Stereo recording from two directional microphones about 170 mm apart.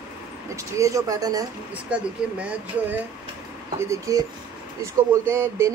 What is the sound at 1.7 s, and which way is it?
Speech, 5° right (ahead or behind).